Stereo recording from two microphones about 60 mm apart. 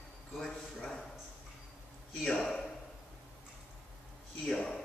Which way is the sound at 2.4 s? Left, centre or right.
Centre.